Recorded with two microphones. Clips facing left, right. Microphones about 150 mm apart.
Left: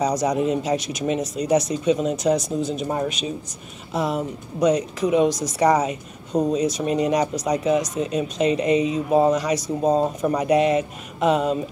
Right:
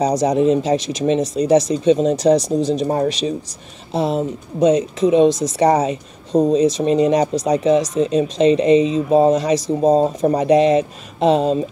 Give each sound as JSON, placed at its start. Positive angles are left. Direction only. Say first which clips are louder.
{"t": 0.0, "sound": "speech", "louder": "right 5 dB", "side_deg": -30}